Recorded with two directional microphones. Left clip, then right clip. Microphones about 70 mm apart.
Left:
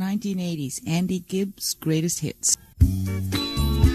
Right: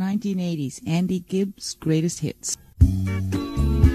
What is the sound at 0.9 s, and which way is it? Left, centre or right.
Speech, centre.